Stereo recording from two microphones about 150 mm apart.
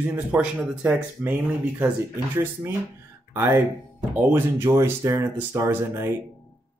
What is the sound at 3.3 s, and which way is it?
Speech, 15° right (ahead or behind).